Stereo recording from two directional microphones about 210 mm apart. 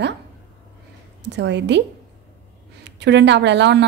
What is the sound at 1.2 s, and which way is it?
Speech, 55° right (ahead or behind).